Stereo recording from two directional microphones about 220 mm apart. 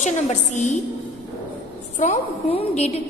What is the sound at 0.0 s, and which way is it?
Speech, 30° left (ahead or behind).